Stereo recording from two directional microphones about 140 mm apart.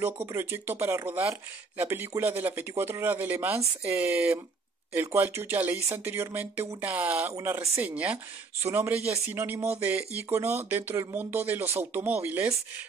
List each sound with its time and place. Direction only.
0.0 s speech: 20° right (ahead or behind)